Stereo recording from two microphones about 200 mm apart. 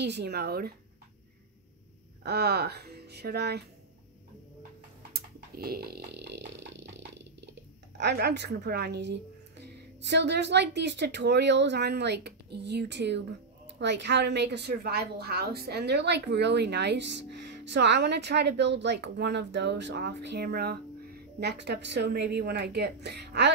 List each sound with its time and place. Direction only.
0.0 s speech: 55° right (ahead or behind)
2.2 s speech: 55° right (ahead or behind)
5.1 s a sound: 50° right (ahead or behind)
8.0 s a woman's voice: 55° right (ahead or behind)